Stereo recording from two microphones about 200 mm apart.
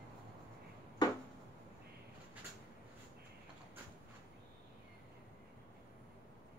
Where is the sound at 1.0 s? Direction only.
20° left (ahead or behind).